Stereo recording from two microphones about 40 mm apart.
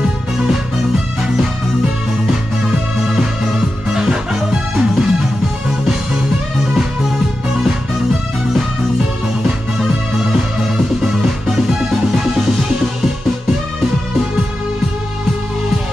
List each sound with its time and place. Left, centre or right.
0.0 s music: centre